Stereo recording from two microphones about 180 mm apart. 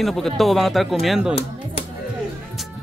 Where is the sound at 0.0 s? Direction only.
Centre (ahead or behind).